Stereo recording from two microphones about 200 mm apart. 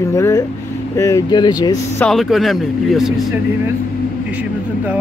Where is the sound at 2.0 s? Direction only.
Centre (ahead or behind).